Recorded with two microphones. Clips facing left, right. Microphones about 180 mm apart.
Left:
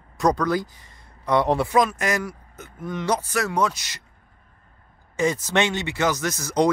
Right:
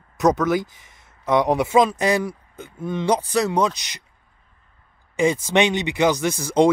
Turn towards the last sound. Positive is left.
turn(degrees=-20)  # may be behind; listen again after turning